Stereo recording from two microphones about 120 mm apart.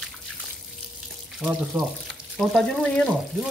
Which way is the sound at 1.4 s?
5° right (ahead or behind).